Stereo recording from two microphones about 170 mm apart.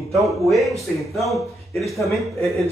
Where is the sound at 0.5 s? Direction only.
Centre (ahead or behind).